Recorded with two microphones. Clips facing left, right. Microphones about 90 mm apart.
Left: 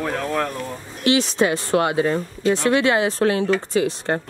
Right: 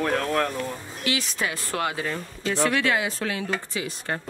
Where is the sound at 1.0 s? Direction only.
25° left (ahead or behind).